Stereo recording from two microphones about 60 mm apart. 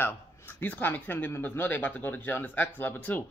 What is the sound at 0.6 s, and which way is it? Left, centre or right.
Speech, left.